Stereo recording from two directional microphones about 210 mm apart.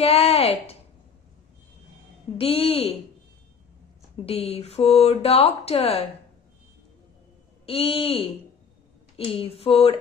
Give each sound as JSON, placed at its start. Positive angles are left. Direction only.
{"t": 0.0, "sound": "speech", "side_deg": 30}
{"t": 2.3, "sound": "speech", "side_deg": 25}
{"t": 4.3, "sound": "speech", "side_deg": 30}
{"t": 7.6, "sound": "speech", "side_deg": 25}